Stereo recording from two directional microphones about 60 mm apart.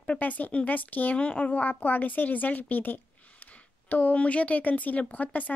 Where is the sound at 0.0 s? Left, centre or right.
Left.